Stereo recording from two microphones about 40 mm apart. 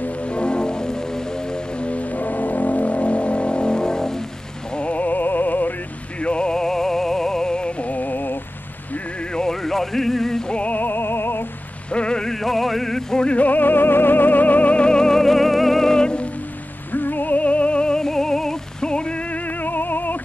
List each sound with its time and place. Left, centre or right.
0.2 s music: left
1.9 s music: left; by 4.2 s centre
4.7 s music: left
5.0 s music: left
6.1 s music: left
7.8 s music: left
9.3 s music: centre
10.5 s music: left
10.8 s music: left
11.9 s a sound: left
12.2 s music: centre
13.4 s music: left
14.9 s music: centre
16.9 s music: left